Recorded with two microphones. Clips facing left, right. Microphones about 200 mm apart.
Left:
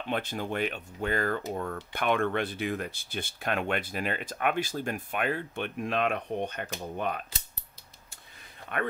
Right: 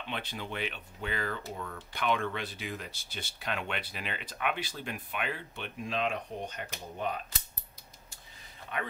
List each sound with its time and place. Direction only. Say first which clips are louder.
0.1 s speech: left 7 dB; 45° left (ahead or behind)